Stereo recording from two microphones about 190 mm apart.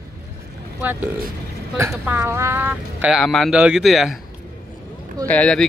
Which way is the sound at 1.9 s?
10° right (ahead or behind).